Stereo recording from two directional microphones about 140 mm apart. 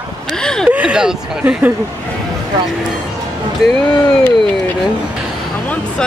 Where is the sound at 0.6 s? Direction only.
5° right (ahead or behind).